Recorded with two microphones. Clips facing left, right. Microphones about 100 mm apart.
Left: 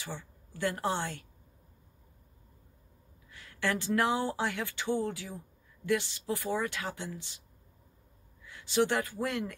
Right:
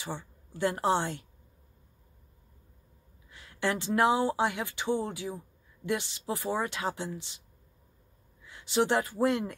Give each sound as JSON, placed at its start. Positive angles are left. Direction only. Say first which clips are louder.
{"t": 0.0, "sound": "a woman's voice", "louder": "right 4 dB", "side_deg": -25}
{"t": 3.3, "sound": "speech", "louder": "right 2 dB", "side_deg": -25}
{"t": 8.5, "sound": "speech", "louder": "right 1 dB", "side_deg": -25}